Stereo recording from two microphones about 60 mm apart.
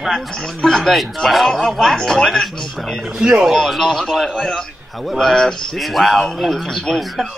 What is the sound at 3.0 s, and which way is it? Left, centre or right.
Speech, centre.